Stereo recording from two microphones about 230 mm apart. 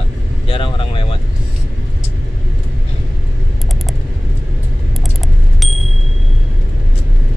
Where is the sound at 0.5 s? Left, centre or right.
Left.